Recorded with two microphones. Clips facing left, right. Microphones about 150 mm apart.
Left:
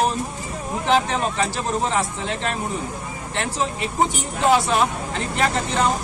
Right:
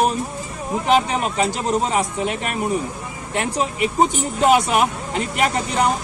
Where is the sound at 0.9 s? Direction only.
15° right (ahead or behind).